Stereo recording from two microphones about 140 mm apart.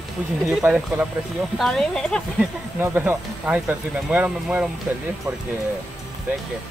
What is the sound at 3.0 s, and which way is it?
Speech, 10° right (ahead or behind).